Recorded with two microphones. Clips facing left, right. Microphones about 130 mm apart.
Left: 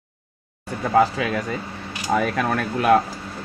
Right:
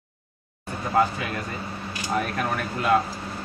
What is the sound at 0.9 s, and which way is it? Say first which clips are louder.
Speech: left 5 dB; 90° left.